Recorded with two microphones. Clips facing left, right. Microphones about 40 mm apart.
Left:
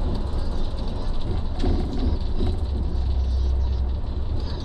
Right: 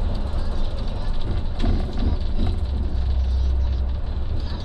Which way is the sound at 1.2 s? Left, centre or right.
Right.